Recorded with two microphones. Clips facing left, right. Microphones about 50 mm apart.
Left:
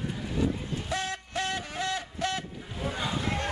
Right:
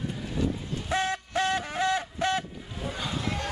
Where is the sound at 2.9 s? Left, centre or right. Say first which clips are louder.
Left 1 dB; centre.